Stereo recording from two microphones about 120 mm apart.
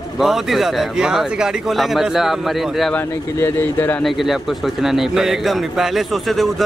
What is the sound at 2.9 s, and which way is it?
Speech, 20° left (ahead or behind).